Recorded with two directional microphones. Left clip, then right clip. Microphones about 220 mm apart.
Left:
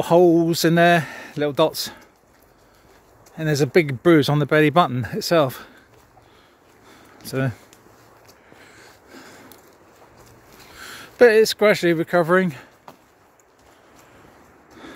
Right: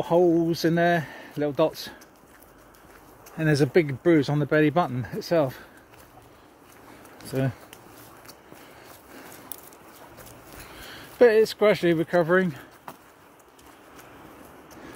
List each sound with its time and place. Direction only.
0.0 s speech: 55° left (ahead or behind)
3.3 s speech: 30° left (ahead or behind); by 5.7 s 50° left (ahead or behind)
7.2 s speech: 40° left (ahead or behind)
10.8 s speech: 45° left (ahead or behind)